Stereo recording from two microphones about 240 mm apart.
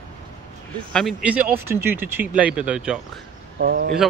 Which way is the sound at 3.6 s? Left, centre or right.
Right.